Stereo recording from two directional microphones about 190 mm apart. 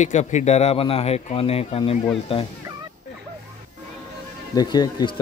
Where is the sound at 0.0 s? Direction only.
40° left (ahead or behind).